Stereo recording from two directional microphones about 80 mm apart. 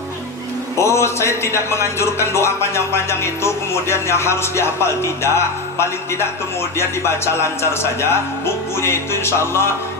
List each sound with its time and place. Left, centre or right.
0.7 s speech: left